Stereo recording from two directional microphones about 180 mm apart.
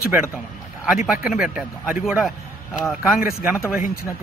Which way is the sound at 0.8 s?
5° right (ahead or behind).